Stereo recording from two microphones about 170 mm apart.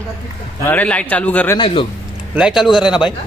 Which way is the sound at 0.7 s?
10° left (ahead or behind).